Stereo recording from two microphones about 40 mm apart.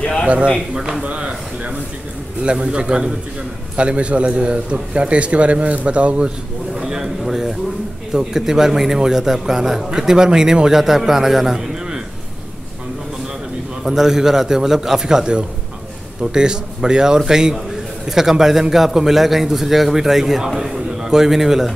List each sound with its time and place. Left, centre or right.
0.3 s a man's voice: right
1.0 s a sound: right
2.4 s a man's voice: right
6.7 s a sound: centre
8.1 s a man's voice: centre
10.8 s a man's voice: centre
13.8 s a man's voice: centre